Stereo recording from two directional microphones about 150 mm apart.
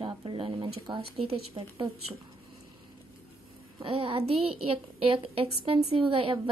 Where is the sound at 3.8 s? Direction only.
35° right (ahead or behind).